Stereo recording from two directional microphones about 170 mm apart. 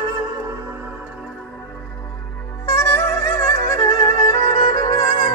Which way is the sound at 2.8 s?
15° left (ahead or behind).